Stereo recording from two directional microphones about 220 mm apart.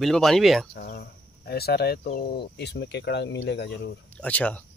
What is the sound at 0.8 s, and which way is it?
Speech, 45° left (ahead or behind).